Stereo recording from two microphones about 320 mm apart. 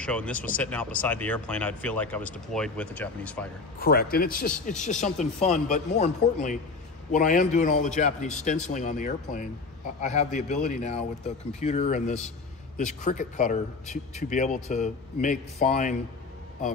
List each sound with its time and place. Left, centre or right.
0.0 s speech: centre
3.8 s speech: left